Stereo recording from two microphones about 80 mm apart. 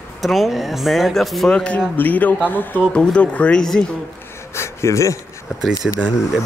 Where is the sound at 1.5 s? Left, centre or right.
Centre.